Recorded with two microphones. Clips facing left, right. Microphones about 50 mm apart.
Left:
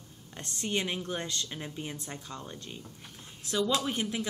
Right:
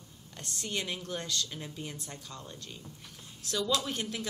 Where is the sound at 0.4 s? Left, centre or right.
Left.